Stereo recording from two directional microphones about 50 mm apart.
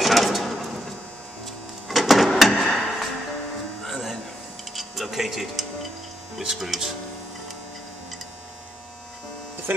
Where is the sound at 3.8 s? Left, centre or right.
Centre.